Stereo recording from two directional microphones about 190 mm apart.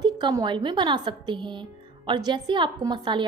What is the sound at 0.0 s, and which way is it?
A woman's voice, 20° right (ahead or behind).